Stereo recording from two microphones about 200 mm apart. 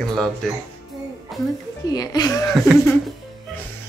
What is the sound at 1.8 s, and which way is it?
Speech, 20° left (ahead or behind).